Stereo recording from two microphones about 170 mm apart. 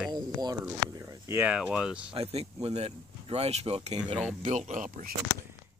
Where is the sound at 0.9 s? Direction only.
20° right (ahead or behind); by 2.1 s 5° right (ahead or behind).